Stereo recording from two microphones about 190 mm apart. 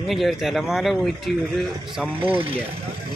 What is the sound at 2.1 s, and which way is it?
Speech, 30° right (ahead or behind).